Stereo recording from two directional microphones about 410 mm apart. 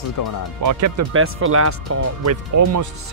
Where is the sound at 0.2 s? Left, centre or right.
Left.